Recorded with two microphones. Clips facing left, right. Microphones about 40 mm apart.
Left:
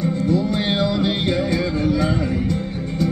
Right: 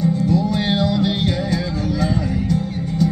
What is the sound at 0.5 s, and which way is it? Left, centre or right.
Music, centre.